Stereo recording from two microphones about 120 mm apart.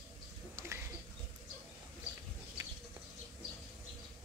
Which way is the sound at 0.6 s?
20° right (ahead or behind).